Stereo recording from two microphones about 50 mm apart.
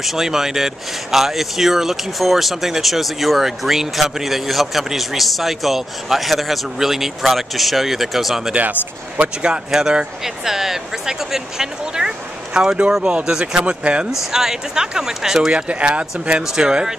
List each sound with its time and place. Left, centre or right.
0.0 s speech: centre
9.1 s speech: right
9.7 s speech: centre
14.3 s speech: centre